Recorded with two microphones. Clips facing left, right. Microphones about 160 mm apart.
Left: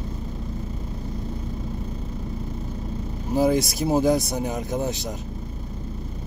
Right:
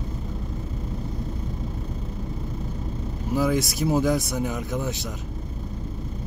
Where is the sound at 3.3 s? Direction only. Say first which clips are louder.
Left 3 dB; 35° left (ahead or behind).